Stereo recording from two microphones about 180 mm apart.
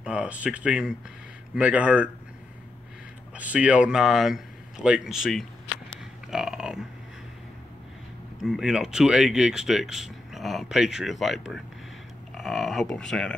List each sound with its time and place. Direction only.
0.0 s speech: 5° right (ahead or behind)
3.3 s speech: 5° right (ahead or behind)
6.3 s a sound: 5° right (ahead or behind)
8.4 s speech: centre (ahead or behind)